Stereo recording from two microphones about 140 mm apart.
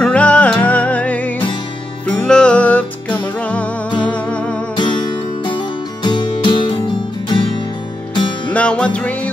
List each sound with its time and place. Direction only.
0.0 s music: 10° left (ahead or behind)
4.7 s music: 35° left (ahead or behind)
8.5 s music: 5° left (ahead or behind)